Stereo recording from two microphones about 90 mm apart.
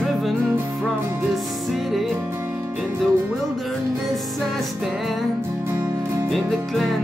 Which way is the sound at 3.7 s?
5° left (ahead or behind).